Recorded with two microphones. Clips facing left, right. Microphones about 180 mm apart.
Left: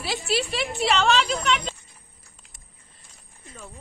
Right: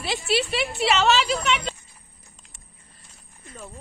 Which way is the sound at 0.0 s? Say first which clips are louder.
Right 2 dB; centre (ahead or behind).